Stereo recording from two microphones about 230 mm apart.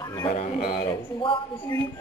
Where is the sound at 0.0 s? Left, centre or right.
Centre.